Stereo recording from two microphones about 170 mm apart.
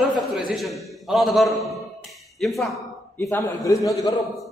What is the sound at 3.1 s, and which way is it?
A man's voice, 15° left (ahead or behind).